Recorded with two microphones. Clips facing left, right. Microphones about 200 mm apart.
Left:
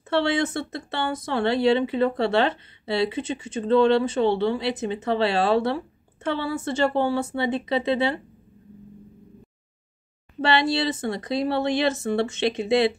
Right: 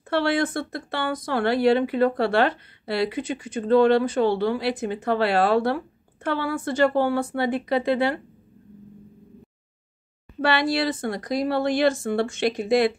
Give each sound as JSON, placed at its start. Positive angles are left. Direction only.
{"t": 0.1, "sound": "speech", "side_deg": 25}
{"t": 10.4, "sound": "speech", "side_deg": 25}